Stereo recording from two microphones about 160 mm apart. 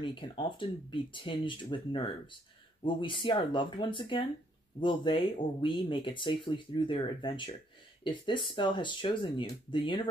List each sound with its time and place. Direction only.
0.0 s speech: 30° left (ahead or behind)